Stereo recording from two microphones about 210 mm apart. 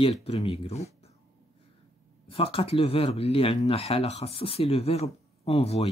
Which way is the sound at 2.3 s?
25° left (ahead or behind).